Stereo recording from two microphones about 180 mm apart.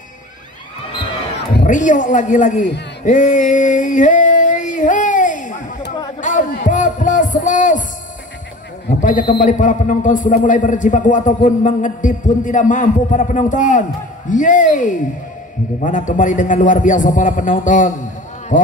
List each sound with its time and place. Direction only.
1.7 s a man's voice: 45° left (ahead or behind)
3.0 s a sound: 45° left (ahead or behind)
9.4 s a man's voice: 45° left (ahead or behind)